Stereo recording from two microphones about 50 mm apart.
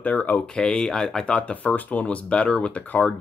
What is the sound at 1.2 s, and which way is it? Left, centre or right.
Speech, left.